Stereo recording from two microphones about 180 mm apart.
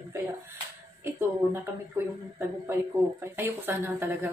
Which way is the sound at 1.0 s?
15° right (ahead or behind).